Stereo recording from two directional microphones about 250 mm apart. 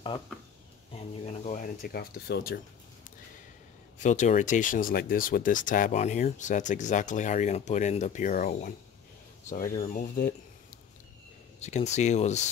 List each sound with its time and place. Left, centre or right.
0.9 s speech: left
4.0 s speech: left
11.6 s speech: left